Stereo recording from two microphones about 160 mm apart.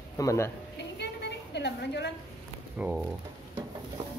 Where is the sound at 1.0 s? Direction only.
90° left.